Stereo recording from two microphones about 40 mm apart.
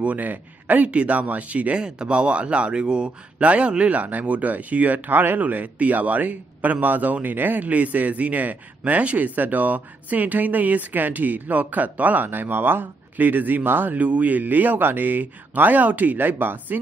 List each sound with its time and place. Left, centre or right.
0.0 s speech: right
0.8 s a man's voice: right
1.8 s a man's voice: right
5.1 s speech: right
5.4 s speech: right
13.9 s speech: right